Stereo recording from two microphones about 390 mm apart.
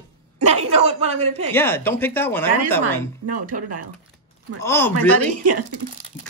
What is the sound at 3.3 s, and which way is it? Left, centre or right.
Speech, right.